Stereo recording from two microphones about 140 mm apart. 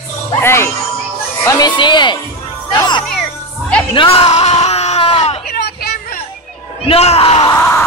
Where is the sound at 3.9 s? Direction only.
40° left (ahead or behind).